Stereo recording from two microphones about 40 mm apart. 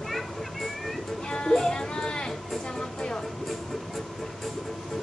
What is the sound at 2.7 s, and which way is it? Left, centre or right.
Music, centre.